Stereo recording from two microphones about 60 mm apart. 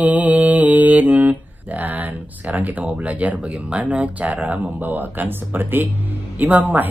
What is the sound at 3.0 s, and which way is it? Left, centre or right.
Speech, right.